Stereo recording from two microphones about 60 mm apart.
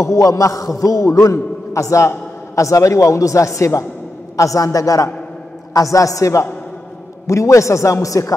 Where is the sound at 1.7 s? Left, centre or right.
Left.